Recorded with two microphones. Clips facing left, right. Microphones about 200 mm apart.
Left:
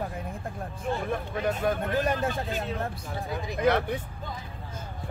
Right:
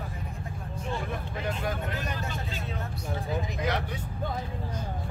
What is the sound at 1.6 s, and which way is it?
Speech, 50° left (ahead or behind).